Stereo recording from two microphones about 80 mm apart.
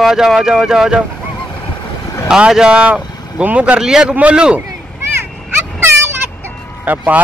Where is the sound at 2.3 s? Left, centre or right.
Centre.